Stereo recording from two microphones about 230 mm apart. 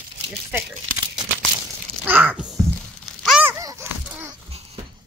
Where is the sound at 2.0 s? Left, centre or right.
Centre.